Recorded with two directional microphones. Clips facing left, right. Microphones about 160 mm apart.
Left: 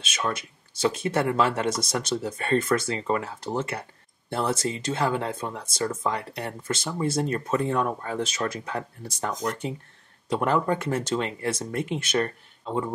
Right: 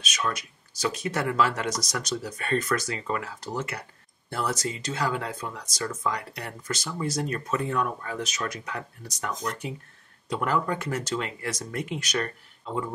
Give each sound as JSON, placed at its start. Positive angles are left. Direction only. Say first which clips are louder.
{"t": 0.0, "sound": "speech", "louder": "left 1 dB", "side_deg": 30}